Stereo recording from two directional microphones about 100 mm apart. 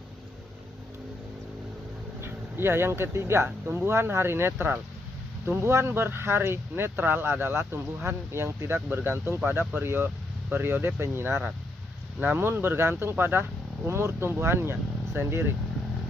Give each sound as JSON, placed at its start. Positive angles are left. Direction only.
{"t": 2.2, "sound": "speech", "side_deg": -25}